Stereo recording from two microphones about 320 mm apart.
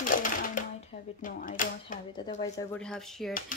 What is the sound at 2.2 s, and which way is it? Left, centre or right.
Speech, centre.